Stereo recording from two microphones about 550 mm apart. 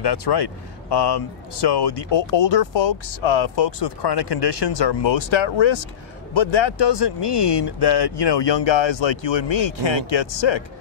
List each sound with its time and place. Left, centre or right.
0.0 s speech: left